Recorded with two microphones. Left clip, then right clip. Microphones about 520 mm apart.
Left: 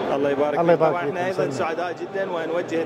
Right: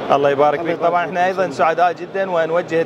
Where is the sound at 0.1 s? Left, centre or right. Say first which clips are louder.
Right 9 dB; right.